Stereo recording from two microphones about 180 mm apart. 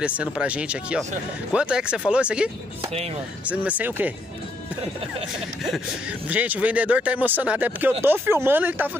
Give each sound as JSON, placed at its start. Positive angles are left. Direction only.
{"t": 0.4, "sound": "speech", "side_deg": -5}
{"t": 2.8, "sound": "speech", "side_deg": -35}
{"t": 3.4, "sound": "speech", "side_deg": -10}
{"t": 5.6, "sound": "speech", "side_deg": -5}